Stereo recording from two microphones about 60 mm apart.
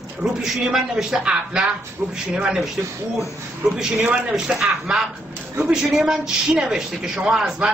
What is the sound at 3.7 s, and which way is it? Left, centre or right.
Speech, centre.